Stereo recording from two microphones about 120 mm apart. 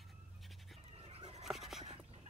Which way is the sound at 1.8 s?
55° right (ahead or behind).